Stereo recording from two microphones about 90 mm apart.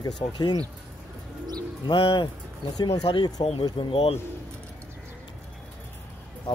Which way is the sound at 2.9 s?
90° left.